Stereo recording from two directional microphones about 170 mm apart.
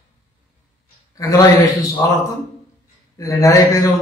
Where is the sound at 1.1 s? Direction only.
20° left (ahead or behind).